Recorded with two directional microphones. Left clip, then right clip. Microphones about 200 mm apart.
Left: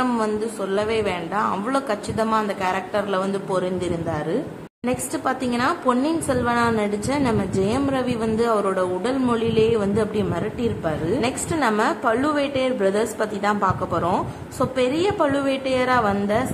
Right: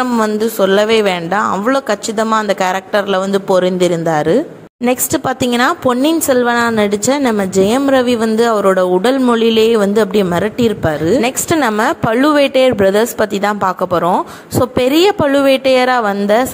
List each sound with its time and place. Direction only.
0.0 s speech: 40° right (ahead or behind)